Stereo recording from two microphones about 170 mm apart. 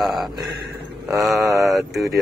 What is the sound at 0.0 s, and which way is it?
Speech, centre (ahead or behind).